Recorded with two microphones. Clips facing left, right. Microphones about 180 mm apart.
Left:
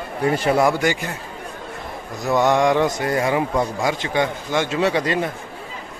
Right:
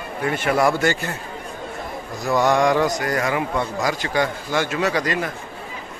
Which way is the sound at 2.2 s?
20° left (ahead or behind).